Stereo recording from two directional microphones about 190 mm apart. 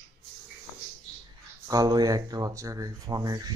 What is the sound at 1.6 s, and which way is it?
Speech, 20° right (ahead or behind).